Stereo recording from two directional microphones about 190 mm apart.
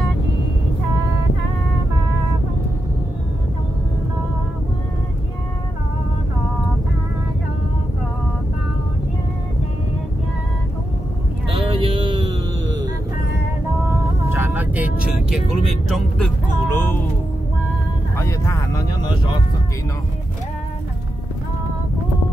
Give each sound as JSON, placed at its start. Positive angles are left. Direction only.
{"t": 11.8, "sound": "music", "side_deg": -25}
{"t": 14.3, "sound": "vehicle", "side_deg": -10}
{"t": 16.7, "sound": "music", "side_deg": 10}
{"t": 18.1, "sound": "vehicle", "side_deg": 15}